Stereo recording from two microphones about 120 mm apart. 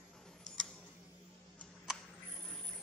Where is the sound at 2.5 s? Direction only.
10° left (ahead or behind).